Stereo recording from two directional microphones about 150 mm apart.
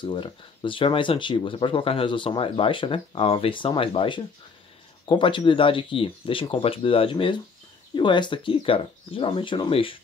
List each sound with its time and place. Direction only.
0.0 s speech: 30° left (ahead or behind)